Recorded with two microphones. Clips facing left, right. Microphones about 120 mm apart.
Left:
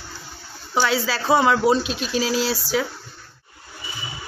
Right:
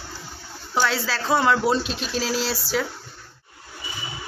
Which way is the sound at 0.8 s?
5° left (ahead or behind).